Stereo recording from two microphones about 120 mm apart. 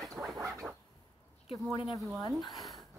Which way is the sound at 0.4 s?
25° right (ahead or behind).